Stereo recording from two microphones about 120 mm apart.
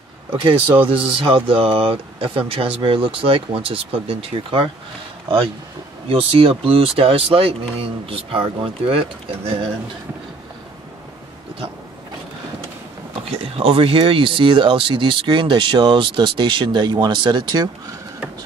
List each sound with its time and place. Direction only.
0.3 s speech: 40° right (ahead or behind)
6.0 s speech: 50° right (ahead or behind)
13.3 s speech: 50° right (ahead or behind)